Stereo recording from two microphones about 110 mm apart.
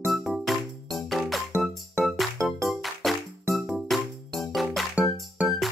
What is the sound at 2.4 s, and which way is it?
Music, centre (ahead or behind).